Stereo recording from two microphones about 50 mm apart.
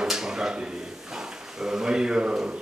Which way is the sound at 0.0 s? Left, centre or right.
Centre.